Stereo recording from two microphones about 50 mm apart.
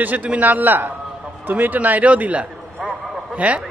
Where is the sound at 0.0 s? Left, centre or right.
Right.